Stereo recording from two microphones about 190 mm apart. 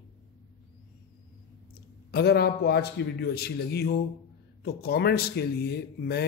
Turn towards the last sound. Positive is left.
turn(degrees=55)  # may be behind; listen again after turning